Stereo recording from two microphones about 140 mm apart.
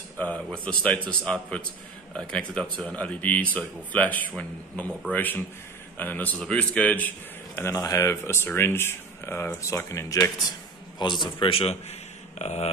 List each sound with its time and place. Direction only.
0.2 s a man's voice: 10° left (ahead or behind)
11.0 s a man's voice: 35° left (ahead or behind); by 12.6 s 50° left (ahead or behind)